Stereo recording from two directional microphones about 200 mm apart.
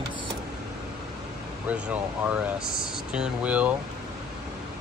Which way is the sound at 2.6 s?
45° left (ahead or behind).